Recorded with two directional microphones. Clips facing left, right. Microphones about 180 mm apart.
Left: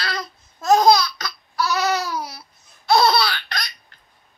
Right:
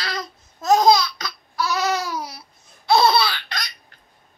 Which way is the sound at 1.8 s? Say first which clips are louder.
Left 1 dB; 15° right (ahead or behind).